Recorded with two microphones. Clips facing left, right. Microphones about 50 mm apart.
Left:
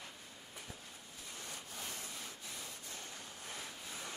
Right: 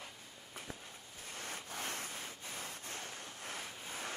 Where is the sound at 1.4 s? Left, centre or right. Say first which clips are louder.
Right 5 dB; right.